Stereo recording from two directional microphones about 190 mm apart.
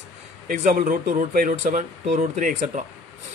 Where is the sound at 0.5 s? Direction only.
45° right (ahead or behind).